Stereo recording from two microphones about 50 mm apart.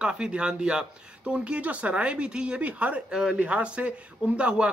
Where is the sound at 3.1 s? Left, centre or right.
Centre.